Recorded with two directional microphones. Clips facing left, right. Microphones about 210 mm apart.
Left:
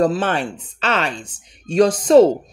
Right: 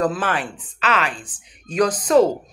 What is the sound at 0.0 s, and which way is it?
Speech, 25° left (ahead or behind).